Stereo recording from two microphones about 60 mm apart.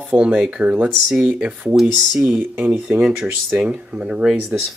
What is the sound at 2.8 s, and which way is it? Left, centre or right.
Speech, centre.